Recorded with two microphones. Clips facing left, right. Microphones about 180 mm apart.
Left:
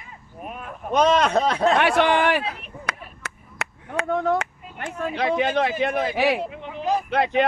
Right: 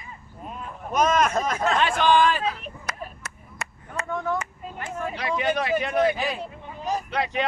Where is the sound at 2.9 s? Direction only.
65° left (ahead or behind).